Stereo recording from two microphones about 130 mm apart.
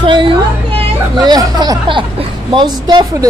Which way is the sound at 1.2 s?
30° right (ahead or behind).